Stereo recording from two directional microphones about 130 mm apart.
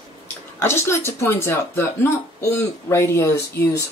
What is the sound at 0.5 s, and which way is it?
Speech, 20° left (ahead or behind).